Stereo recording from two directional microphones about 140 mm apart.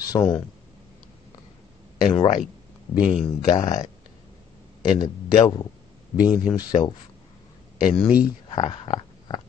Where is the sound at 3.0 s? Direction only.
5° right (ahead or behind).